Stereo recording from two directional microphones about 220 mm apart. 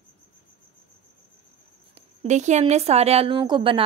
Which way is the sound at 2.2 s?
30° right (ahead or behind).